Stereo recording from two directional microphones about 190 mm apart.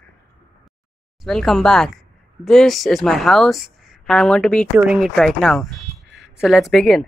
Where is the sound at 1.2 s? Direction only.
Centre (ahead or behind).